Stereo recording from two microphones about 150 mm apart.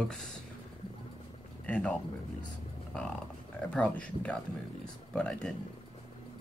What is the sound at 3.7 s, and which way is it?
Speech, 10° left (ahead or behind).